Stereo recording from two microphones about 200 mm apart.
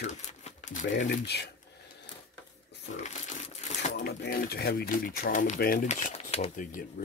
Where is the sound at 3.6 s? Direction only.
35° left (ahead or behind).